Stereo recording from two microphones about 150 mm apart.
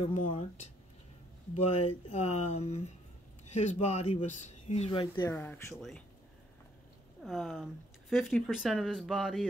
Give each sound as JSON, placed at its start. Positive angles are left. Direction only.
{"t": 1.5, "sound": "speech", "side_deg": 40}
{"t": 5.3, "sound": "speech", "side_deg": 10}
{"t": 7.2, "sound": "speech", "side_deg": 0}